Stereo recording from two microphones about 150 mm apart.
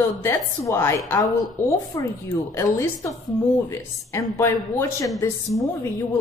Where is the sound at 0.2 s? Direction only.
15° left (ahead or behind).